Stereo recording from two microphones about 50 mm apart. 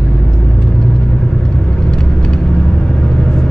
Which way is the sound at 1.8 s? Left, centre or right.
Left.